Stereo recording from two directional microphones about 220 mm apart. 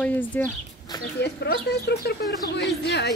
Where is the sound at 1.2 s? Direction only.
50° left (ahead or behind).